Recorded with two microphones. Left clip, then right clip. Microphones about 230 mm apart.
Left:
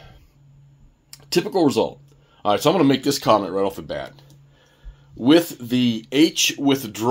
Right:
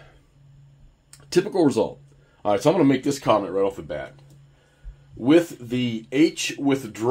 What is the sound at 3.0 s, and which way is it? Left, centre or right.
Speech, left.